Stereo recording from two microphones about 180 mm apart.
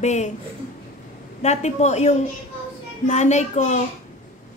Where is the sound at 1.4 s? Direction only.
40° left (ahead or behind).